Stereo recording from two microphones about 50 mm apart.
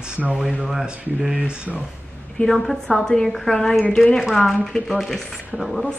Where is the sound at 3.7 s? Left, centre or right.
Left.